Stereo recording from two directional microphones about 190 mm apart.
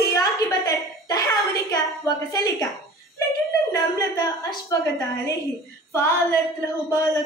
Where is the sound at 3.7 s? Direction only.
20° left (ahead or behind).